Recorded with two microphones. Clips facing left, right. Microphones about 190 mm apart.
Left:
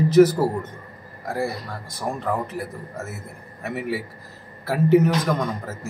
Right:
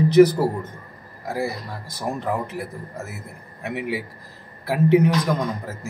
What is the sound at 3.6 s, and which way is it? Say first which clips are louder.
A man's voice: even; centre (ahead or behind).